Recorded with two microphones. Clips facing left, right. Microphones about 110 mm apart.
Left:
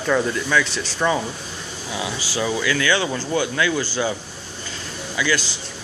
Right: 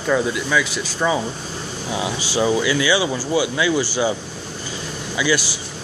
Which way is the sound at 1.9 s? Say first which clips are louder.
Right 4 dB; 20° right (ahead or behind).